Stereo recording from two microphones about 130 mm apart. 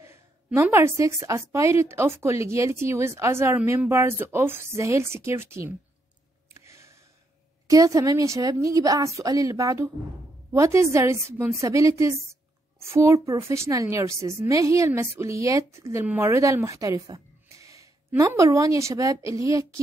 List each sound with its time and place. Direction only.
0.6 s speech: 20° right (ahead or behind)
6.5 s a sound: 20° right (ahead or behind)
7.6 s speech: 25° right (ahead or behind)